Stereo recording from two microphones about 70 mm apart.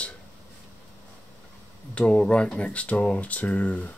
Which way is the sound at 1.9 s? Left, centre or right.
Centre.